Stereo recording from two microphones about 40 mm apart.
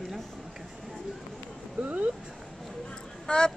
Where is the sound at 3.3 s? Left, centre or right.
Left.